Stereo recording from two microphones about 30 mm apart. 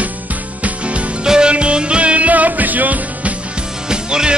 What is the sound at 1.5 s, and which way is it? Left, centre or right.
Music, right.